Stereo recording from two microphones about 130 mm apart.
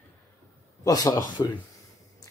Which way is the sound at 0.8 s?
25° left (ahead or behind).